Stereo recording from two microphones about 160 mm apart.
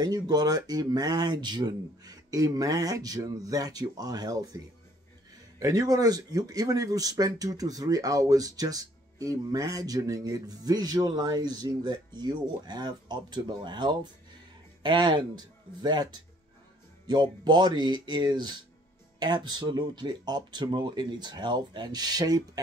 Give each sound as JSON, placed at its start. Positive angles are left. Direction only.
{"t": 0.0, "sound": "speech", "side_deg": -25}
{"t": 5.6, "sound": "speech", "side_deg": -20}